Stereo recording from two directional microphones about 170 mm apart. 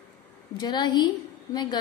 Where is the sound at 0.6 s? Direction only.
25° left (ahead or behind).